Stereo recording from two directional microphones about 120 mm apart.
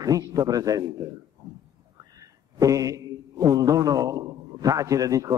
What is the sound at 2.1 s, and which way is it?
A man's voice, 30° right (ahead or behind).